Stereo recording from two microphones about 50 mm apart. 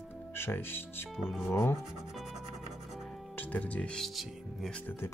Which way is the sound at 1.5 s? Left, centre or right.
Left.